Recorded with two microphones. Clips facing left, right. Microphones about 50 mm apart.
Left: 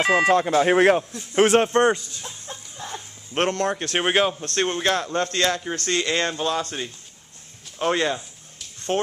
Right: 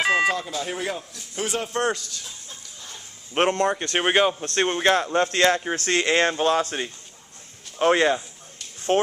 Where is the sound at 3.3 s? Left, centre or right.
Centre.